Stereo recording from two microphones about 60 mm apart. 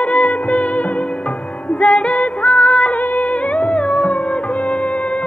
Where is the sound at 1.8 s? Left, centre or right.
Left.